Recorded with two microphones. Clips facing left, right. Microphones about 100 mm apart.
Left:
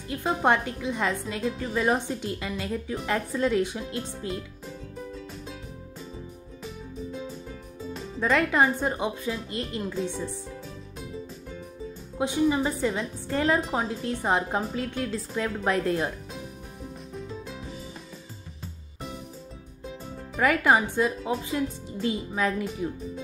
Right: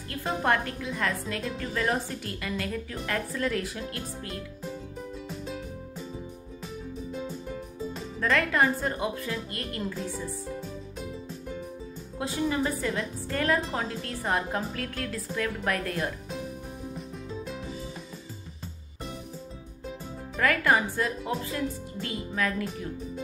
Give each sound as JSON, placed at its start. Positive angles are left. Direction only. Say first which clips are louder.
{"t": 0.4, "sound": "a woman's voice", "louder": "left 2 dB", "side_deg": 20}
{"t": 5.3, "sound": "music", "louder": "right 4 dB", "side_deg": 0}
{"t": 8.2, "sound": "speech", "louder": "left 2 dB", "side_deg": 20}
{"t": 12.2, "sound": "speech", "louder": "left 4 dB", "side_deg": 15}
{"t": 16.9, "sound": "music", "louder": "even", "side_deg": 0}
{"t": 20.3, "sound": "speech", "louder": "left 3 dB", "side_deg": 20}